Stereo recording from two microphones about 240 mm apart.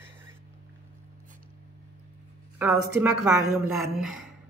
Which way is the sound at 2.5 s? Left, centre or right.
Centre.